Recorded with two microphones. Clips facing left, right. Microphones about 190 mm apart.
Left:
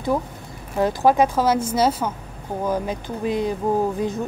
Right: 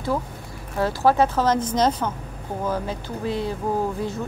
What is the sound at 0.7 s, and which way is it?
Speech, 15° left (ahead or behind).